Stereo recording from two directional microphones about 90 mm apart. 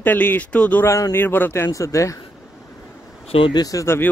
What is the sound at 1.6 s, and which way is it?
Speech, 35° left (ahead or behind).